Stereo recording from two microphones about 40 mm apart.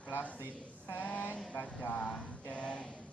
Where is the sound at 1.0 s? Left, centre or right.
Left.